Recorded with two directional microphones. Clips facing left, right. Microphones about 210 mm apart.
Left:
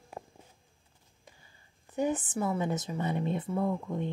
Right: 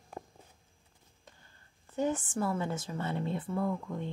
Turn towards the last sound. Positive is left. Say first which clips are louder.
# left 3 dB
turn(degrees=20)  # may be behind; listen again after turning